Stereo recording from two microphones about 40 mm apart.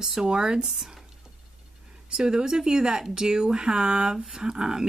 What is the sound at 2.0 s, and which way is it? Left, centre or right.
Speech, centre.